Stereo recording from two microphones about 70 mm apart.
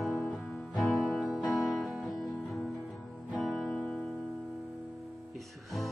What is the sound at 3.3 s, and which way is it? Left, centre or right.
Guitar, centre.